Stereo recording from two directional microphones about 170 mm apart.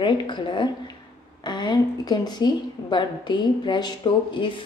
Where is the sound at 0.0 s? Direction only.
30° left (ahead or behind).